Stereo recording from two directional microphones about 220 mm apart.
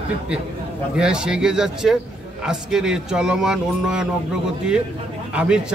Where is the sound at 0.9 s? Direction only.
5° right (ahead or behind).